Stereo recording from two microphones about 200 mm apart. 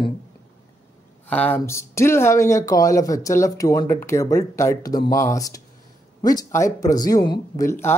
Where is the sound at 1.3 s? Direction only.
10° left (ahead or behind).